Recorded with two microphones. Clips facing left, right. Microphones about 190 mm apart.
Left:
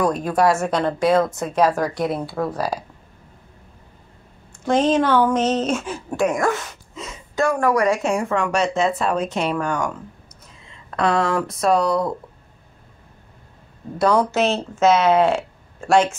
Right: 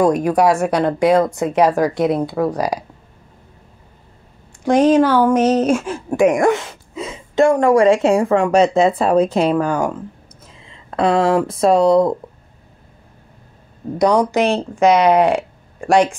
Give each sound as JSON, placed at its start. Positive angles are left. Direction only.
{"t": 0.0, "sound": "speech", "side_deg": -15}
{"t": 4.6, "sound": "speech", "side_deg": -10}
{"t": 6.0, "sound": "a sound", "side_deg": -15}
{"t": 7.6, "sound": "speech", "side_deg": -25}
{"t": 13.9, "sound": "speech", "side_deg": -15}